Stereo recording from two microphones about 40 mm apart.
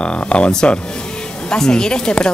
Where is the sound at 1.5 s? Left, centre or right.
Centre.